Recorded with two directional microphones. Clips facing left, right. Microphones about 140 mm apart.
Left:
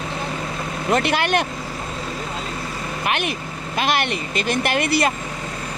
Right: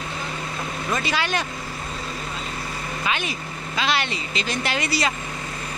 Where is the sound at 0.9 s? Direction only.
60° left (ahead or behind).